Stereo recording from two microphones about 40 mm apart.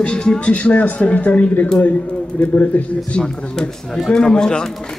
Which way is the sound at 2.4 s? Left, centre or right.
Left.